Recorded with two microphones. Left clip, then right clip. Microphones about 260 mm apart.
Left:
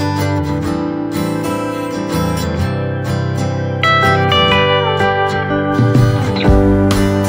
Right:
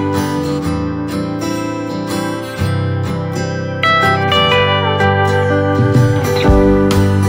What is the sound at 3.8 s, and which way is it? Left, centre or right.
Music, centre.